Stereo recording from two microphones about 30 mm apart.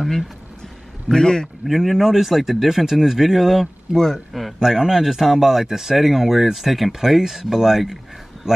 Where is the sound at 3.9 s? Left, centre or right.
Centre.